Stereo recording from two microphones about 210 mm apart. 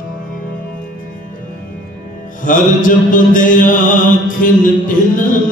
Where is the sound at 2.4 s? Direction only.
40° left (ahead or behind).